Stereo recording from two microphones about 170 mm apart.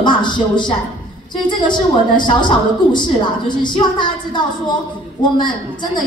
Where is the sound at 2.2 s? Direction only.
25° left (ahead or behind).